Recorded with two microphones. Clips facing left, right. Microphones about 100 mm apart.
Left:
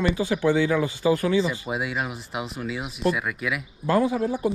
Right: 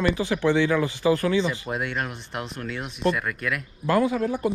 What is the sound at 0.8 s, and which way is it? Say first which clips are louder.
Speech: even; 45° right (ahead or behind).